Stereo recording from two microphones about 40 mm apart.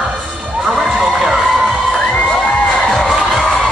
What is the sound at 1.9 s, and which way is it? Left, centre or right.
Crowd, centre.